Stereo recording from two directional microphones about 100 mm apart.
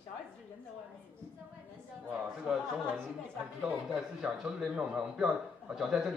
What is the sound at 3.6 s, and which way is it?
A man's voice, 10° right (ahead or behind).